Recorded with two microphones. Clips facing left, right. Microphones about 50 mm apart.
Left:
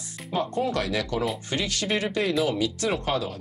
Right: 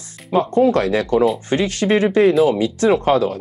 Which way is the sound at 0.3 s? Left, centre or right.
Right.